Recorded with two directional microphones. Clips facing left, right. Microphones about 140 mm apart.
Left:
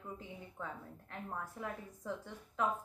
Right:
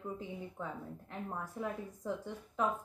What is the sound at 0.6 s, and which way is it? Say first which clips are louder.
A woman's voice: right 3 dB; 15° right (ahead or behind).